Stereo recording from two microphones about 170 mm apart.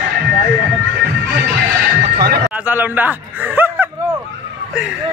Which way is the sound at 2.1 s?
70° right (ahead or behind).